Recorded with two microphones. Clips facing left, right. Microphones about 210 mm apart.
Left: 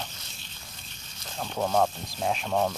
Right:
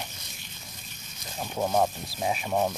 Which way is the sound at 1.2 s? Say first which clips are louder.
Even; 10° right (ahead or behind).